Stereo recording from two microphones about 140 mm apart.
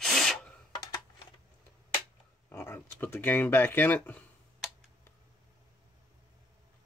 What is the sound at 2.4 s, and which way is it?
Speech, 15° left (ahead or behind).